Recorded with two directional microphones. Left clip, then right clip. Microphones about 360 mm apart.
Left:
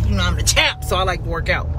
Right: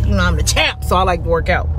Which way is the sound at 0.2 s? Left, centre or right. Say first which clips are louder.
Right 1 dB; centre.